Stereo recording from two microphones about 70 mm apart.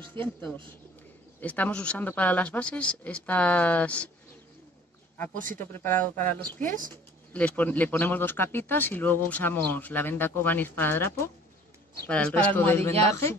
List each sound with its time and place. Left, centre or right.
0.0 s speech: left
5.1 s speech: left
12.1 s speech: centre
12.5 s speech: left
12.8 s speech: left